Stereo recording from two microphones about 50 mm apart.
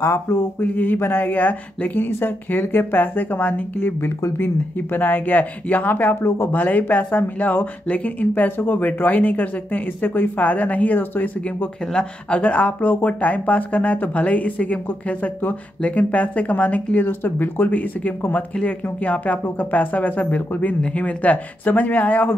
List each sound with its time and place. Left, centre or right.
0.0 s speech: left
0.6 s speech: left
2.0 s speech: left
2.5 s speech: left
11.9 s speech: left
15.8 s speech: left